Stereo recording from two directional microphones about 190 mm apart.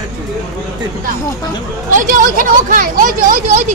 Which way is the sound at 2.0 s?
45° right (ahead or behind).